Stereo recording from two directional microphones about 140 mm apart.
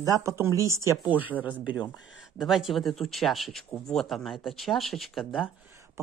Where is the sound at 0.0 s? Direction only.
25° right (ahead or behind).